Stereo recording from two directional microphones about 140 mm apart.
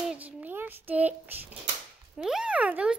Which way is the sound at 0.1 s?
15° right (ahead or behind).